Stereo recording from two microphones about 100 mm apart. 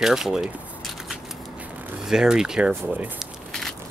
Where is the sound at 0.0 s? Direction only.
5° right (ahead or behind).